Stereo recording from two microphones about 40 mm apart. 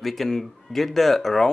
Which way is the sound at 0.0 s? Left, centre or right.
Centre.